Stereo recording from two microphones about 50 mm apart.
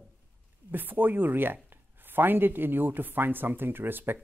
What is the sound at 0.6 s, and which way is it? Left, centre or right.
Speech, right.